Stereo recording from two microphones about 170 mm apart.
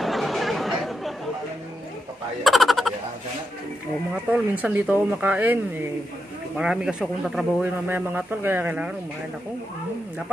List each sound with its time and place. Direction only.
0.0 s chatter: centre (ahead or behind)
2.4 s a sound: centre (ahead or behind)
4.1 s a man's voice: 5° right (ahead or behind)